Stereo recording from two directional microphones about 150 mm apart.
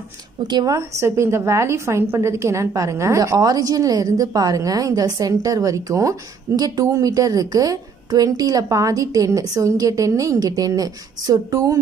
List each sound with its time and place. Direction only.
0.5 s a woman's voice: 25° right (ahead or behind)